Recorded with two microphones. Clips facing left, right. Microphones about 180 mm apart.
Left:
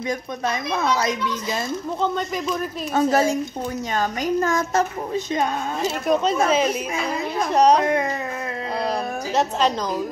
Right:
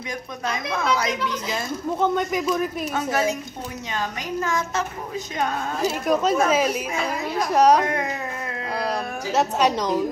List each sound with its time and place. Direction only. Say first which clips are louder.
0.7 s speech: even; 25° left (ahead or behind)
2.0 s speech: right 3 dB; 10° right (ahead or behind)
2.9 s a woman's voice: left 8 dB; 35° left (ahead or behind)
5.9 s speech: even; 5° right (ahead or behind)
9.3 s speech: right 1 dB; 5° right (ahead or behind)